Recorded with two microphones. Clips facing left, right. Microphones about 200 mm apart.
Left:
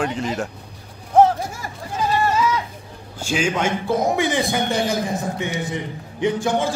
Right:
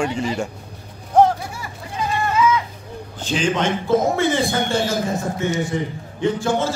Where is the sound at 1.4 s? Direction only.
45° left (ahead or behind).